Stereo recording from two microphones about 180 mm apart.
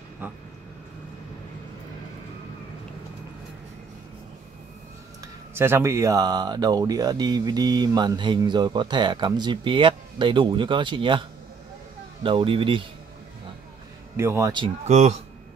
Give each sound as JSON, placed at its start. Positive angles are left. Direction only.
{"t": 0.2, "sound": "a man's voice", "side_deg": -10}
{"t": 5.2, "sound": "speech", "side_deg": -15}
{"t": 14.1, "sound": "a man's voice", "side_deg": -15}
{"t": 14.9, "sound": "speech", "side_deg": -40}